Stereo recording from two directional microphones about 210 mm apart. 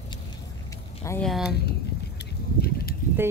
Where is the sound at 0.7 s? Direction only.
15° left (ahead or behind).